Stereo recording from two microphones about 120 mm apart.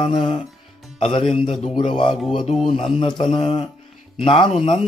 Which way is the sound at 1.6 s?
45° left (ahead or behind).